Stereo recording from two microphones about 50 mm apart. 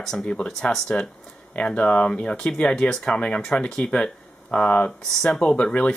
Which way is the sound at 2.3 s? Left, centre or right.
Centre.